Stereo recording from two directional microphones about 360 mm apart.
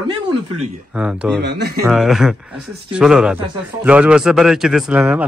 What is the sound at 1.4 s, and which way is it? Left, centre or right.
Speech, right.